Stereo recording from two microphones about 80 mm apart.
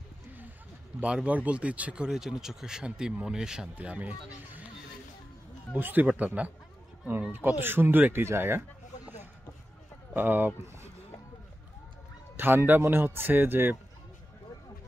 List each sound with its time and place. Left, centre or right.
1.0 s speech: centre
5.8 s speech: right
10.1 s speech: right
12.4 s speech: right